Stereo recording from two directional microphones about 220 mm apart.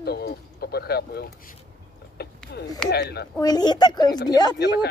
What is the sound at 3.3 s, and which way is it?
A woman's voice, 15° left (ahead or behind).